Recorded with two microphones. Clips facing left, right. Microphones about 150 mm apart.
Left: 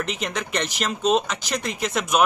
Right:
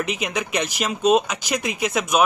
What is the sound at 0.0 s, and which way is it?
Speech, 5° right (ahead or behind).